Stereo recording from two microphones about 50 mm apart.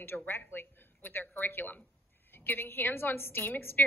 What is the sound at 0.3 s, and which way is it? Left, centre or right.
A woman's voice, left.